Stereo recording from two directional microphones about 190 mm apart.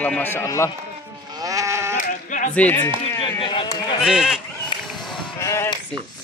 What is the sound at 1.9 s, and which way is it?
Sheep, 40° left (ahead or behind).